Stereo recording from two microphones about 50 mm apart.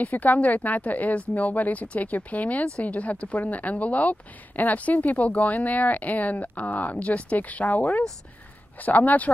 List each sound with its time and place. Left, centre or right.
0.0 s speech: left